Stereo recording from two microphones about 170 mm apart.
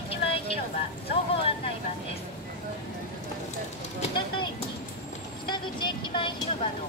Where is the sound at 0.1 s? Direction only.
35° left (ahead or behind).